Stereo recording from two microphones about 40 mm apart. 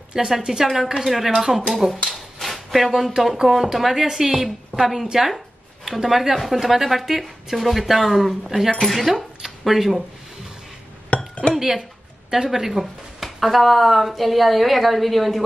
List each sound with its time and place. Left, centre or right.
0.1 s a woman's voice: centre
2.3 s a sound: centre
2.9 s a woman's voice: centre
11.1 s chink: left
11.5 s a woman's voice: centre